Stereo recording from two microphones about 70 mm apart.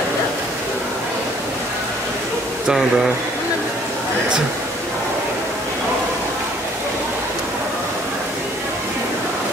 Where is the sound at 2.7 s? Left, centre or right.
Centre.